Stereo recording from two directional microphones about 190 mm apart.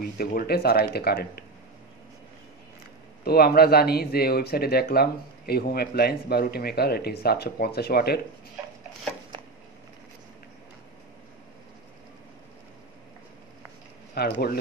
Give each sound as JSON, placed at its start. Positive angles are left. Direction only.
{"t": 0.0, "sound": "speech", "side_deg": 50}
{"t": 3.3, "sound": "speech", "side_deg": 55}
{"t": 14.2, "sound": "speech", "side_deg": 55}